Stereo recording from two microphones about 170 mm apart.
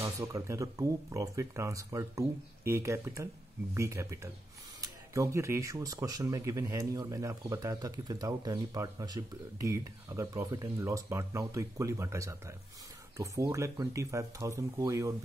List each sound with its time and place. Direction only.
0.0 s speech: 20° right (ahead or behind)